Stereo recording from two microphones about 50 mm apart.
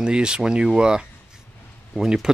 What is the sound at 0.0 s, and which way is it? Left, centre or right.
Speech, centre.